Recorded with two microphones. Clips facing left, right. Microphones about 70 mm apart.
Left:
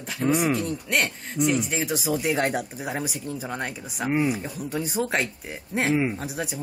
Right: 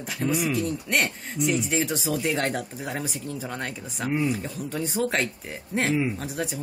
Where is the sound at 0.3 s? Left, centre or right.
Left.